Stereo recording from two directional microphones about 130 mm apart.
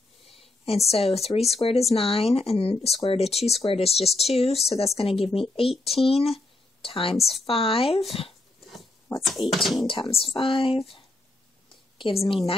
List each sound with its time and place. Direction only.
0.4 s a woman's voice: 50° left (ahead or behind)
9.2 s speech: centre (ahead or behind)
9.8 s speech: 40° left (ahead or behind)
12.0 s speech: 45° left (ahead or behind)